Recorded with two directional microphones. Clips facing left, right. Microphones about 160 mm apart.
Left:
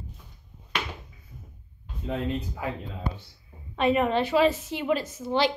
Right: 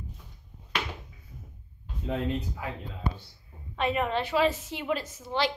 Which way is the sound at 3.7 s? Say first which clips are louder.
Left 5 dB; 10° left (ahead or behind).